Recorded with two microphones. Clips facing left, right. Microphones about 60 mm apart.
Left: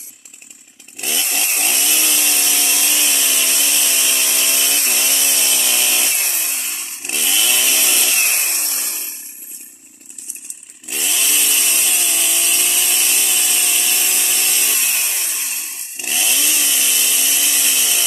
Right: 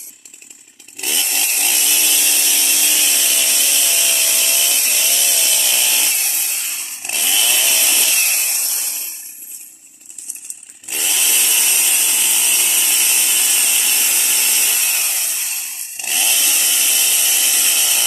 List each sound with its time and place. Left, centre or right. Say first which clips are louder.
1.0 s chainsaw: even; centre
1.4 s chainsaw: left 1 dB; left
2.0 s a sound: even; left
2.8 s a sound: even; centre
4.5 s chainsaw: left 1 dB; left
5.5 s tools: even; centre
6.6 s chainsaw: even; centre
8.4 s chainsaw: left 2 dB; left
10.9 s chainsaw: even; centre